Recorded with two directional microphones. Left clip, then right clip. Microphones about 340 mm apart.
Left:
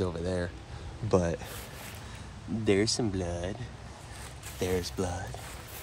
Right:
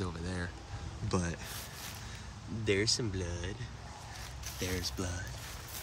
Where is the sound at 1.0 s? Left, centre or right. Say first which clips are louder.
Left 9 dB; centre.